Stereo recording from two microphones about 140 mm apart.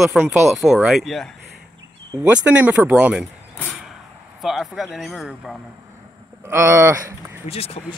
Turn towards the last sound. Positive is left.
turn(degrees=45)  # may be behind; listen again after turning